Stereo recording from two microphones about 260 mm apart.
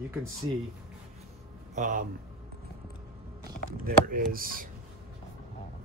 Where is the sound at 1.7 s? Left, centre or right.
Right.